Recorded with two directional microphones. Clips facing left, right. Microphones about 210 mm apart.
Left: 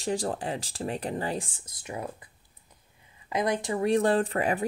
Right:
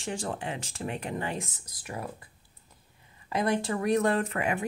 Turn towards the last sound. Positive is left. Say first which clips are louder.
# left 3 dB
turn(degrees=35)  # may be behind; listen again after turning